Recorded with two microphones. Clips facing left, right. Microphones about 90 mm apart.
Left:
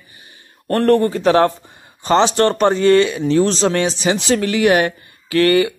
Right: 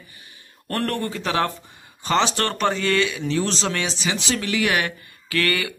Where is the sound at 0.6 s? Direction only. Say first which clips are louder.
Left 11 dB; 35° left (ahead or behind).